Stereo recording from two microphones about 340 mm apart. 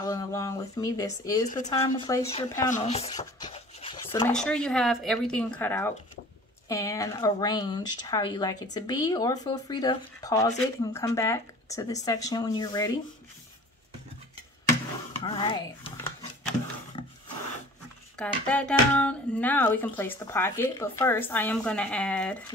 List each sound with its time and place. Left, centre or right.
0.0 s speech: centre
15.2 s a sound: centre
17.0 s wood: centre
18.1 s speech: centre